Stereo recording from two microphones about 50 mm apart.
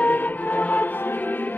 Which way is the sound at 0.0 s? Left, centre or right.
Left.